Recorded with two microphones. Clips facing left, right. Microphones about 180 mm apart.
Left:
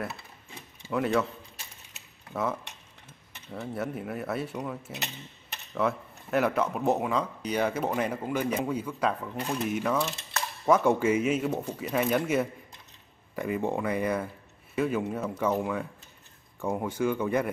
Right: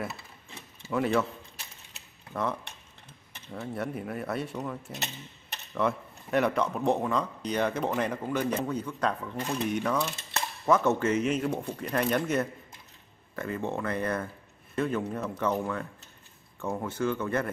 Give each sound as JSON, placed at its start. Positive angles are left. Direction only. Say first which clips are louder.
{"t": 0.9, "sound": "cutlery", "louder": "even", "side_deg": 0}
{"t": 2.3, "sound": "cutlery", "louder": "left 1 dB", "side_deg": 5}
{"t": 5.8, "sound": "speech", "louder": "even", "side_deg": 0}